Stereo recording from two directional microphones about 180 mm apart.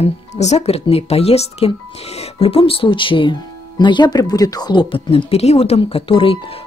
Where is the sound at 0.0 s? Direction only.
40° left (ahead or behind).